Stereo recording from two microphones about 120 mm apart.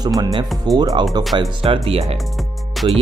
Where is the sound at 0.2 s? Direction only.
35° right (ahead or behind).